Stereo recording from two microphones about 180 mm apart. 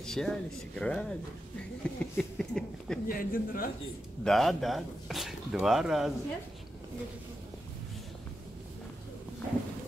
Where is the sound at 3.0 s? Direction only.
55° left (ahead or behind).